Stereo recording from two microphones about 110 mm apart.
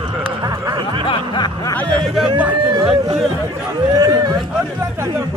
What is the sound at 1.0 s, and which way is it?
Music, 45° left (ahead or behind).